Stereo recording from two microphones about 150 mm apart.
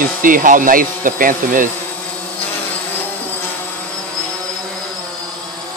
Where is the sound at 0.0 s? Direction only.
65° right (ahead or behind).